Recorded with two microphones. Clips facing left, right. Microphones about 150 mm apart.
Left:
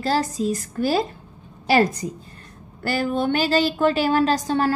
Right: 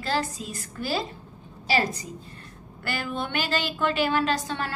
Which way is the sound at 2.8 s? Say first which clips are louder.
Left 9 dB; 40° left (ahead or behind).